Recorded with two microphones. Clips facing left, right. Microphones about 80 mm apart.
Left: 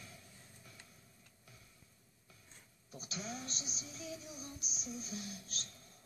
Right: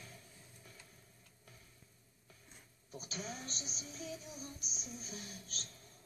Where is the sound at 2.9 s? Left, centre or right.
Right.